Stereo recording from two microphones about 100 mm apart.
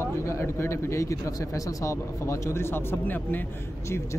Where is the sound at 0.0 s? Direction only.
25° left (ahead or behind).